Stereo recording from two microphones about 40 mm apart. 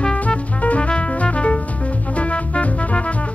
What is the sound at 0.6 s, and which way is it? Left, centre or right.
Music, left.